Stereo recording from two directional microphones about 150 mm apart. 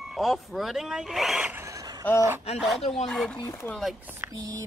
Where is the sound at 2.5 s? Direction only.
Centre (ahead or behind).